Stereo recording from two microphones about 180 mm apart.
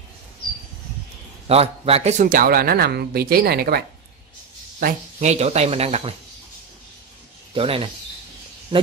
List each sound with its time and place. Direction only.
1.5 s speech: 35° right (ahead or behind); by 3.8 s 60° right (ahead or behind)
4.7 s speech: 45° right (ahead or behind)
7.5 s speech: 30° right (ahead or behind)